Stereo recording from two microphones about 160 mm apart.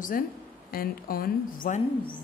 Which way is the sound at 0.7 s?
65° left (ahead or behind).